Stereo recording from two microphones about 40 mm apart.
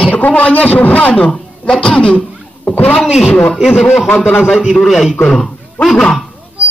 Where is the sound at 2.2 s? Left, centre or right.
Centre.